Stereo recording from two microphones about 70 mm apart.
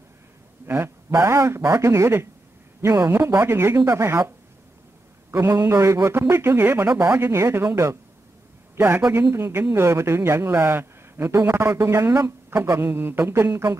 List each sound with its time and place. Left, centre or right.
0.7 s speech: right
5.3 s speech: right